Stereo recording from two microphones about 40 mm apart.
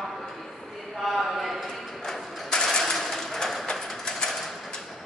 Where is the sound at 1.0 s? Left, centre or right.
Centre.